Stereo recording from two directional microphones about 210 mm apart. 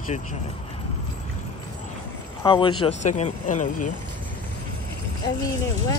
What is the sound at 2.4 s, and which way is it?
Speech, 25° left (ahead or behind).